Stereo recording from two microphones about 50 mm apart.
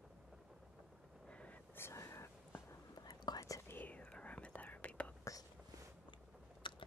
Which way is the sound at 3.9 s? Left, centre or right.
Left.